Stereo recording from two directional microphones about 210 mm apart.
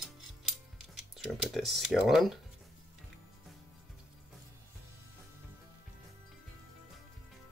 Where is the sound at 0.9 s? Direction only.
Centre (ahead or behind).